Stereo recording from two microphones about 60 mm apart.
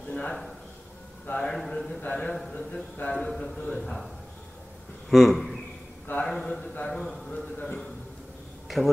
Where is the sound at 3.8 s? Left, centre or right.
Centre.